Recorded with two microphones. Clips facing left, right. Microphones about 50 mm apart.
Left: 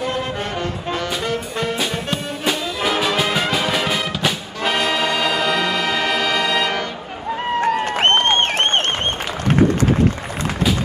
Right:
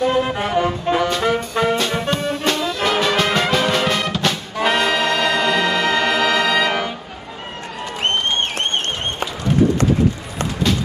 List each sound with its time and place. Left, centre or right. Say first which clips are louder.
0.0 s music: right 5 dB; centre
4.6 s brass instrument: right 3 dB; centre
7.6 s a sound: left 6 dB; left